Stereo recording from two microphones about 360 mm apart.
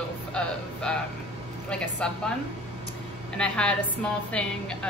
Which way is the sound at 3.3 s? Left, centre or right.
Centre.